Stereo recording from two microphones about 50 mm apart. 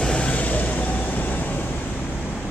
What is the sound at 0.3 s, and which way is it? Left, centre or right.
Vehicle, left.